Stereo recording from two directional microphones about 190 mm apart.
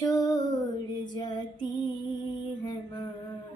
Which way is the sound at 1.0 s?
25° left (ahead or behind).